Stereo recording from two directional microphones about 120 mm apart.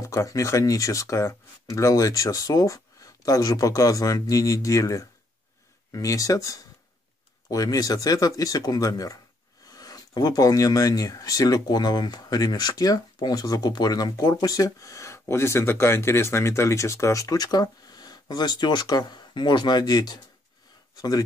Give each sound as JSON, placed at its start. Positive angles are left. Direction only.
{"t": 0.0, "sound": "speech", "side_deg": 25}